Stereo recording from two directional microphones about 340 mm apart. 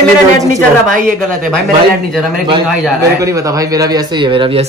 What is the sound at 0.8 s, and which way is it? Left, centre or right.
Speech, right.